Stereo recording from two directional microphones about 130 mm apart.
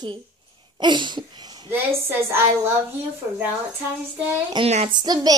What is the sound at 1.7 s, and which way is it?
A woman's voice, 15° right (ahead or behind).